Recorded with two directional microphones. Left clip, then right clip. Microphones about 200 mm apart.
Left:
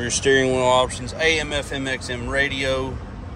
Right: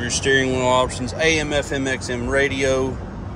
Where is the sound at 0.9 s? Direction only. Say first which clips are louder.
Right 1 dB; 25° right (ahead or behind).